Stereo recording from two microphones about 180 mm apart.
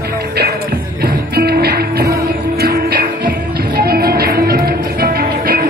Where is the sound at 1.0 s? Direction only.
60° right (ahead or behind).